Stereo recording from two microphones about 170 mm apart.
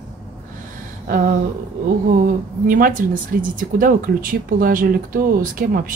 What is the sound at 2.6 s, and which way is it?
Speech, 55° right (ahead or behind).